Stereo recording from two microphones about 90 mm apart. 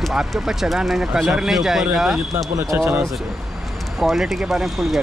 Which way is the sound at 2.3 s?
35° right (ahead or behind).